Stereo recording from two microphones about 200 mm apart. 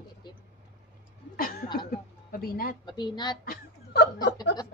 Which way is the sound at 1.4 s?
45° left (ahead or behind).